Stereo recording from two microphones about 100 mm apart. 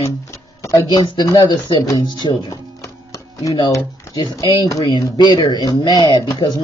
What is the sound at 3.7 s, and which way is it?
Speech, 40° left (ahead or behind).